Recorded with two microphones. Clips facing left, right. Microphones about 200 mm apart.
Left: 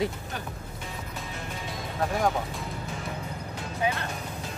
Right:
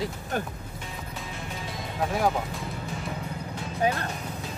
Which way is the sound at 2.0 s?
5° right (ahead or behind).